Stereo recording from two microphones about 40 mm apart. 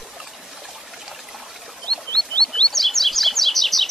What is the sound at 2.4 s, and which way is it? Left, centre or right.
Chirp, left.